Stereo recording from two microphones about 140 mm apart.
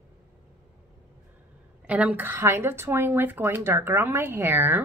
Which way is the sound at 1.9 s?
10° right (ahead or behind).